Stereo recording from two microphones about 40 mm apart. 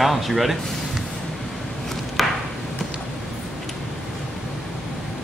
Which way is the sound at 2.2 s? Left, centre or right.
Centre.